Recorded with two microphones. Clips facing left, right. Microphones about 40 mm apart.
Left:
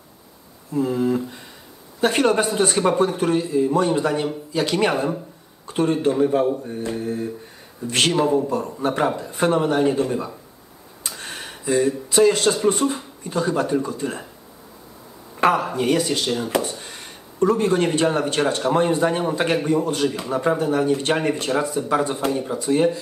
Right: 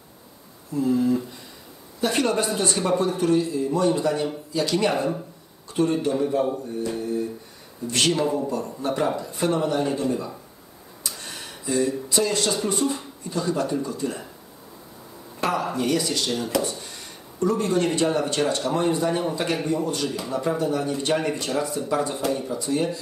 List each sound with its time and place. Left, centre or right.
0.7 s speech: left
7.8 s speech: left
8.1 s a man's voice: centre
8.8 s speech: left
9.4 s speech: left
11.1 s a sound: left
12.6 s speech: left
15.7 s speech: left
16.8 s speech: left
22.1 s speech: left